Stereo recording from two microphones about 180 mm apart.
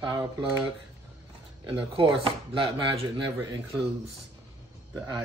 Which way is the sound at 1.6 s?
30° right (ahead or behind).